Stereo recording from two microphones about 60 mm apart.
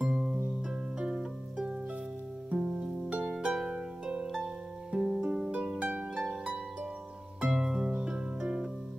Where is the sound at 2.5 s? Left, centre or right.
Centre.